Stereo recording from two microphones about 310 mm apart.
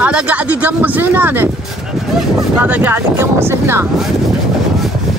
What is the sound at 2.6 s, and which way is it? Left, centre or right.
Speech, centre.